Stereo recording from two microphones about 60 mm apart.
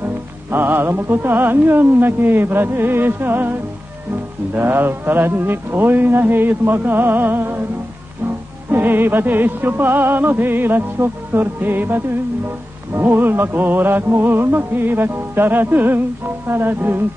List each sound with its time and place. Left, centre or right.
0.0 s music: right
8.6 s music: right